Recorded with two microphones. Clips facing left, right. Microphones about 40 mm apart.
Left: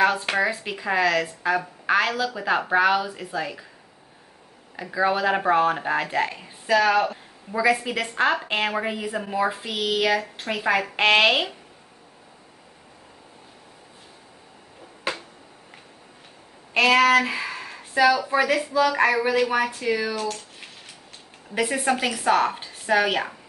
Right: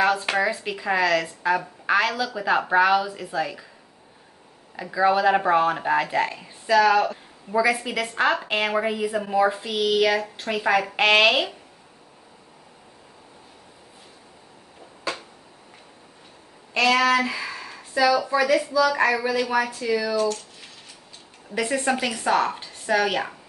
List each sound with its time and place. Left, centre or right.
0.0 s speech: centre
4.7 s speech: centre
16.7 s a woman's voice: left
21.5 s a woman's voice: centre